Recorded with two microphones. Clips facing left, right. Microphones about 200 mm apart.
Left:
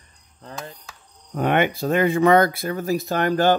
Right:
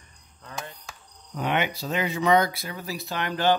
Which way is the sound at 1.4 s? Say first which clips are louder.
Left 7 dB; 50° left (ahead or behind).